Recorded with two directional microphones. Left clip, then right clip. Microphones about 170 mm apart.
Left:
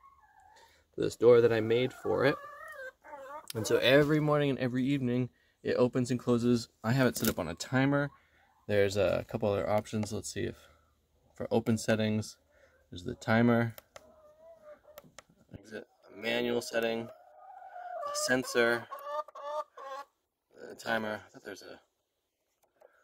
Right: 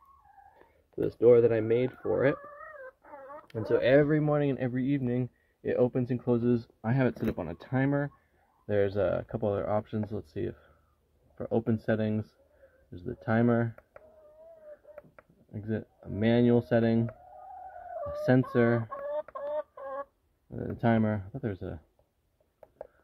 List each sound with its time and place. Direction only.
0.9 s speech: 5° right (ahead or behind)
3.6 s speech: centre (ahead or behind)
16.2 s speech: 5° left (ahead or behind)
18.0 s speech: centre (ahead or behind)
19.1 s chicken: 45° right (ahead or behind)
20.7 s speech: 5° left (ahead or behind)